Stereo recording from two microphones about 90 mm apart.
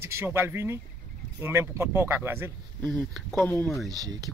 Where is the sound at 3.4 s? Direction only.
25° left (ahead or behind).